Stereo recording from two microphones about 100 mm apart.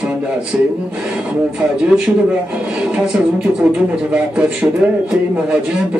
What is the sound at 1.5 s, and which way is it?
Speech, 10° right (ahead or behind).